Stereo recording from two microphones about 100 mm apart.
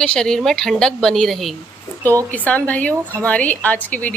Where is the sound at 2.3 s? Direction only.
15° left (ahead or behind).